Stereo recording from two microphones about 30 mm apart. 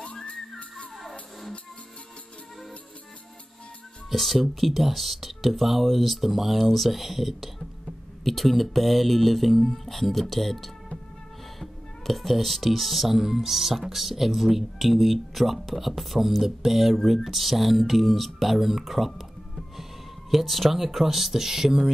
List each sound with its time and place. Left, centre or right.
0.0 s whistling: left
4.1 s speech: centre